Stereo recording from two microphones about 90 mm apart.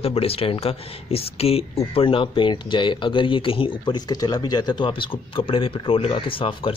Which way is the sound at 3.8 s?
50° left (ahead or behind).